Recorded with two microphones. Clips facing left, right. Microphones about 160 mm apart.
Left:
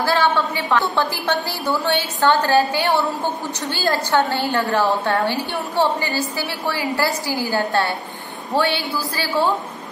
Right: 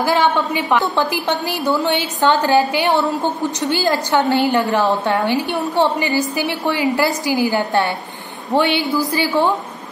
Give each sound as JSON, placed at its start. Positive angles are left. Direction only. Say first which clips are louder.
{"t": 0.0, "sound": "a woman's voice", "louder": "right 2 dB", "side_deg": -15}